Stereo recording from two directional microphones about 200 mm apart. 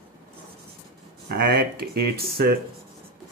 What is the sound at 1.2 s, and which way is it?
Speech, 50° right (ahead or behind).